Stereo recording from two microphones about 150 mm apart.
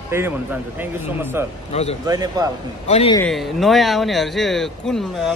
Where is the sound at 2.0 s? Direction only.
25° right (ahead or behind).